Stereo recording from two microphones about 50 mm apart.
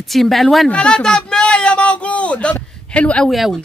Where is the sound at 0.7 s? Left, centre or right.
Centre.